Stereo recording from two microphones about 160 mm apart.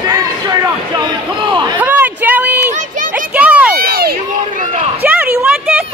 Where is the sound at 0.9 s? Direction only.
30° right (ahead or behind).